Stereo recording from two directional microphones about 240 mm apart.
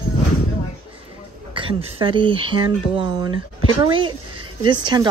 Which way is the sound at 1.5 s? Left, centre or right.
Right.